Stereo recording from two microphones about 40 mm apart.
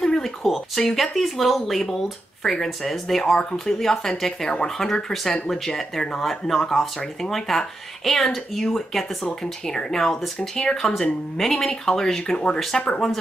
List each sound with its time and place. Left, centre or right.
0.0 s speech: centre